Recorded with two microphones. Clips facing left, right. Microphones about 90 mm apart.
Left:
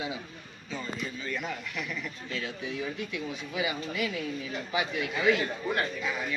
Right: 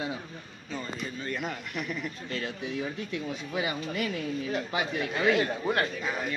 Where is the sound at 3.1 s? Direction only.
45° right (ahead or behind).